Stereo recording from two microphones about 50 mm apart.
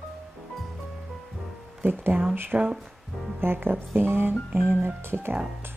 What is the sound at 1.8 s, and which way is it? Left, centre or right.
Speech, right.